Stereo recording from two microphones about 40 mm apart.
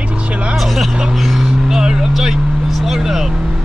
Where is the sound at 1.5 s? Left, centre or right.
Centre.